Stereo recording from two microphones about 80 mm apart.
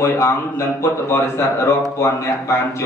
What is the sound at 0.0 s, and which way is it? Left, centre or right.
Speech, left.